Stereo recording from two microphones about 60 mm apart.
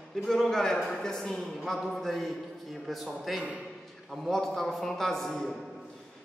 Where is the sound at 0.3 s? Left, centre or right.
Centre.